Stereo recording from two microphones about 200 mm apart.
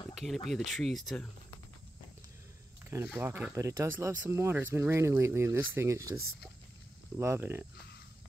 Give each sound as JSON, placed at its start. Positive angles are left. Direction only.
{"t": 0.1, "sound": "speech", "side_deg": 0}
{"t": 3.2, "sound": "speech", "side_deg": -10}
{"t": 7.2, "sound": "speech", "side_deg": -10}